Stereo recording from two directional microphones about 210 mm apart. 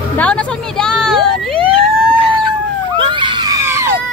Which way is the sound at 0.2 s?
5° left (ahead or behind).